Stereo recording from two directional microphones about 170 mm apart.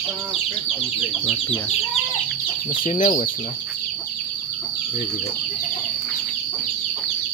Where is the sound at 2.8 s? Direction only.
50° left (ahead or behind).